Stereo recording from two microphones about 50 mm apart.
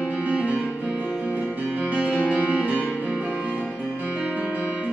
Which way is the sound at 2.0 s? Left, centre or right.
Right.